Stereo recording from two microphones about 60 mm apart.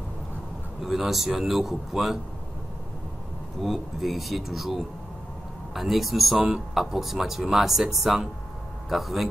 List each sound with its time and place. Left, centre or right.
0.8 s speech: centre
3.6 s speech: centre